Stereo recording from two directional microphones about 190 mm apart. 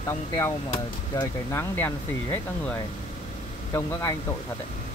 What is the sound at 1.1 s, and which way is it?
Speech, 10° left (ahead or behind).